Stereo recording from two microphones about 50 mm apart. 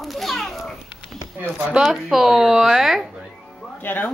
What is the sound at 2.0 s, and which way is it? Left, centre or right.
Speech, centre.